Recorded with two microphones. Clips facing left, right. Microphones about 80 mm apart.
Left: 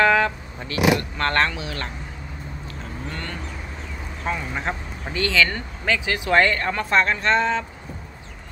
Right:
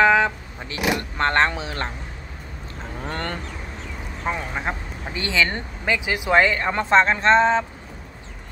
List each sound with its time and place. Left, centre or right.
0.0 s speech: centre
3.1 s a sound: right
4.2 s speech: centre
6.7 s speech: right